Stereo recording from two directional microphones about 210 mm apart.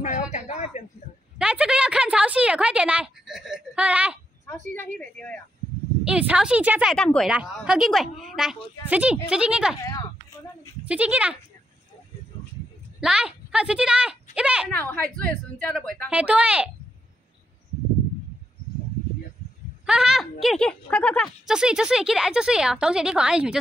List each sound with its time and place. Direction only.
0.3 s a sound: 35° left (ahead or behind)
1.4 s a woman's voice: 5° right (ahead or behind)
4.7 s a woman's voice: 5° left (ahead or behind)
6.0 s a woman's voice: 5° right (ahead or behind)
10.9 s speech: 5° right (ahead or behind)
13.0 s speech: 5° right (ahead or behind)
14.7 s a woman's voice: 5° left (ahead or behind)
19.9 s a woman's voice: 5° right (ahead or behind)